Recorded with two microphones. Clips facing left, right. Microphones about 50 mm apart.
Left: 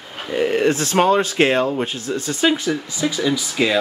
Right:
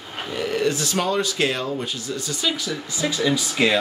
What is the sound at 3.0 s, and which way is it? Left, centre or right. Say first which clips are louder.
Speech: left 3 dB; centre.